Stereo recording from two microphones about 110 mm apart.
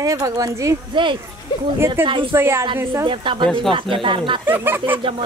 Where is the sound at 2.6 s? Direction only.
45° right (ahead or behind).